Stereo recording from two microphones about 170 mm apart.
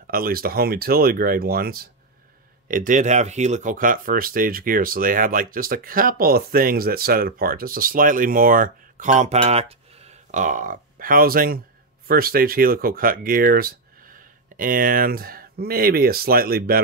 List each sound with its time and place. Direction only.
0.0 s speech: 60° right (ahead or behind)
2.7 s speech: 50° right (ahead or behind)